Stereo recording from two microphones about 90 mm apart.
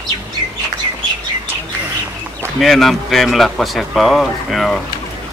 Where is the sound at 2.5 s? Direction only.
Centre (ahead or behind).